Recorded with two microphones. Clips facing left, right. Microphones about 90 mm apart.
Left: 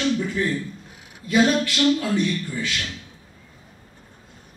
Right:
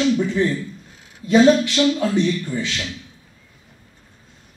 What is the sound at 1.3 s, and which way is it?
A man's voice, 25° right (ahead or behind).